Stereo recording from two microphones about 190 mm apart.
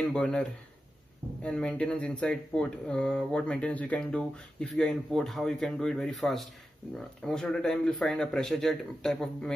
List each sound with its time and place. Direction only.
0.1 s speech: 5° left (ahead or behind)